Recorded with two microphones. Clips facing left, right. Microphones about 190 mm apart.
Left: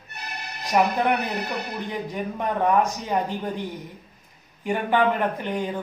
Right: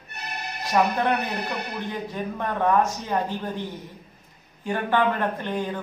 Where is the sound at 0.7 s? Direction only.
15° left (ahead or behind).